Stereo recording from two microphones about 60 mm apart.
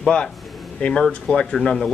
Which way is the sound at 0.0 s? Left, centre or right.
Centre.